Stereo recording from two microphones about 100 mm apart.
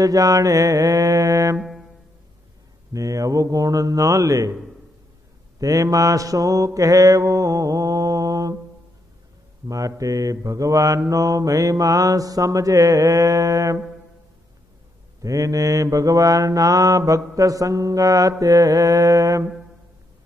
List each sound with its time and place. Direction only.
0.0 s mantra: 35° right (ahead or behind)
1.6 s music: centre (ahead or behind)
2.9 s mantra: 35° right (ahead or behind)
5.6 s mantra: 35° right (ahead or behind)
9.7 s mantra: 35° right (ahead or behind)
15.2 s mantra: 35° right (ahead or behind)